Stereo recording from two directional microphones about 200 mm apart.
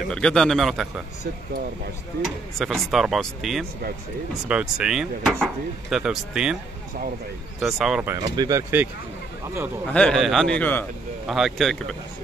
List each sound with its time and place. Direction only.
0.1 s speech: 5° left (ahead or behind)
2.6 s speech: centre (ahead or behind)
7.6 s speech: 5° right (ahead or behind)
8.4 s speech: 15° right (ahead or behind)
9.8 s speech: 5° left (ahead or behind)
11.2 s speech: centre (ahead or behind)